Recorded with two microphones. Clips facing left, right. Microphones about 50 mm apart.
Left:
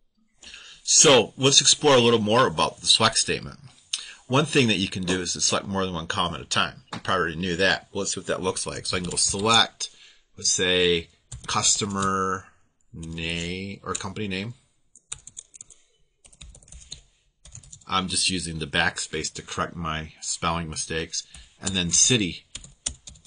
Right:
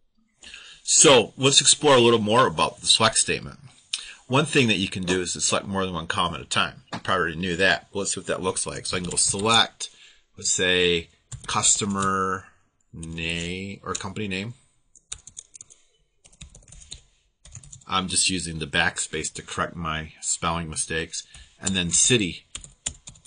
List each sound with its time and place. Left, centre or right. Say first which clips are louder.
0.4 s speech: right 1 dB; centre
15.0 s typing: even; centre
16.3 s typing: right 1 dB; centre
16.7 s computer keyboard: left 1 dB; centre
17.6 s speech: even; centre
22.5 s typing: even; centre